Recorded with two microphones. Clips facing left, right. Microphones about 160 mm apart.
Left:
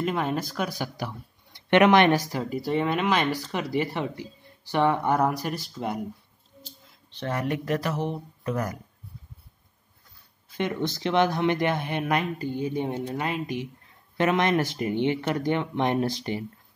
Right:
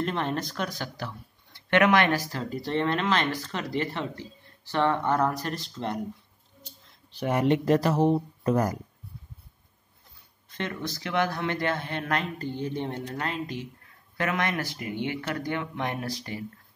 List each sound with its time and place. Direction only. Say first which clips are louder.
0.0 s speech: left 2 dB; 10° left (ahead or behind)
6.9 s a sound: right 3 dB; 5° right (ahead or behind)
7.2 s speech: right 5 dB; 25° right (ahead or behind)
10.5 s speech: left 5 dB; 20° left (ahead or behind)
14.1 s speech: left 6 dB; 25° left (ahead or behind)